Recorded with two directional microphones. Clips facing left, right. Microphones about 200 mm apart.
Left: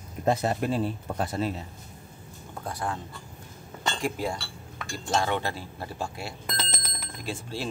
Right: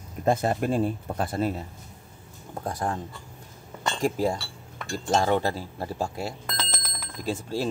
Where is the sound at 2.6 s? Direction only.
45° right (ahead or behind).